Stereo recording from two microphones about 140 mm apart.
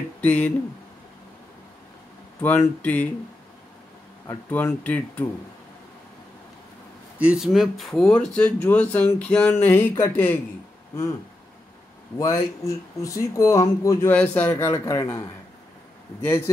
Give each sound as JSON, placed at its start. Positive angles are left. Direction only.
{"t": 0.2, "sound": "speech", "side_deg": 10}
{"t": 2.4, "sound": "speech", "side_deg": 15}
{"t": 4.3, "sound": "speech", "side_deg": 15}
{"t": 7.2, "sound": "speech", "side_deg": -5}
{"t": 12.2, "sound": "speech", "side_deg": 25}
{"t": 14.1, "sound": "speech", "side_deg": 10}